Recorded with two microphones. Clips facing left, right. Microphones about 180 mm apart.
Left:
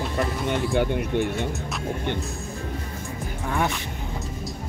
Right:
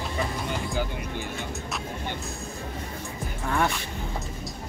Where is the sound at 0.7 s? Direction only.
65° left (ahead or behind).